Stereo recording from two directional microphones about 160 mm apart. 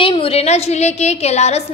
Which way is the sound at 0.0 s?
35° left (ahead or behind).